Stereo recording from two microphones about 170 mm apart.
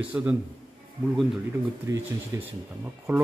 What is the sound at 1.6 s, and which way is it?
Speech, 15° right (ahead or behind).